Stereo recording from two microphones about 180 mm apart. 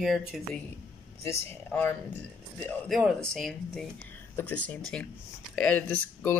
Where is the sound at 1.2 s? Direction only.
10° left (ahead or behind).